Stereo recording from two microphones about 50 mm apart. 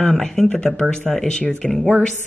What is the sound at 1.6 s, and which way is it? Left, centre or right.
Speech, centre.